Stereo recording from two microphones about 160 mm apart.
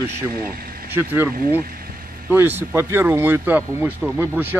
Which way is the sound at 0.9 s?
10° right (ahead or behind).